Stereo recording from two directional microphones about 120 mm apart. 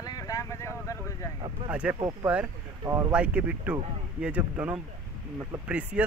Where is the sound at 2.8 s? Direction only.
25° right (ahead or behind).